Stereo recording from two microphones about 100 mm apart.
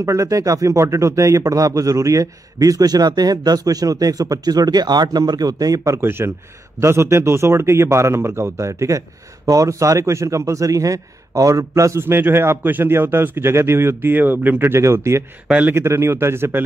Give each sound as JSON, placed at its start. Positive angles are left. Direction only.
{"t": 0.0, "sound": "speech", "side_deg": -30}
{"t": 5.9, "sound": "a man's voice", "side_deg": -25}
{"t": 15.4, "sound": "speech", "side_deg": -15}
{"t": 15.7, "sound": "a man's voice", "side_deg": -25}